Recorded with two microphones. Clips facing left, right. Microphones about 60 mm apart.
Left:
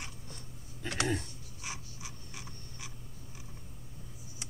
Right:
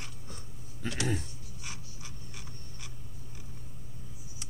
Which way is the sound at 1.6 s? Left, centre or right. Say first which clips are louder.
Left 3 dB; centre.